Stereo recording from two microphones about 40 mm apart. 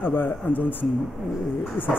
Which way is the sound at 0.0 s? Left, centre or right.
Left.